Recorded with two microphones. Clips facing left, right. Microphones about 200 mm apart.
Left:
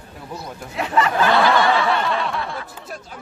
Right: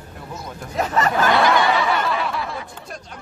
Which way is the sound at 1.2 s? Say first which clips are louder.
Even; 15° right (ahead or behind).